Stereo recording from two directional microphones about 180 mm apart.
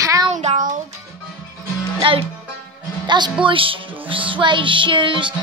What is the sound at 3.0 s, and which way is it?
Speech, 25° right (ahead or behind).